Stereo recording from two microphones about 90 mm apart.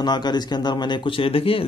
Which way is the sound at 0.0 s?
50° left (ahead or behind).